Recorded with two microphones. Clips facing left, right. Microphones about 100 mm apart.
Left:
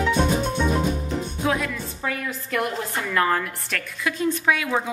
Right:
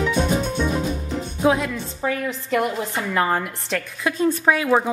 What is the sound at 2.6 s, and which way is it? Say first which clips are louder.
Speech: right 3 dB; 5° right (ahead or behind).